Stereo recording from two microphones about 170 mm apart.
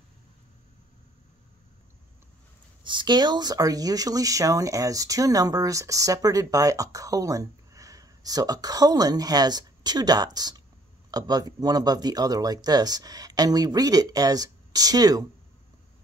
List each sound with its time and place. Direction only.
2.8 s speech: 30° right (ahead or behind)